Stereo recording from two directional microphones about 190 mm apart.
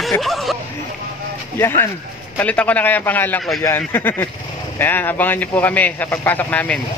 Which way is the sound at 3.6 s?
10° left (ahead or behind).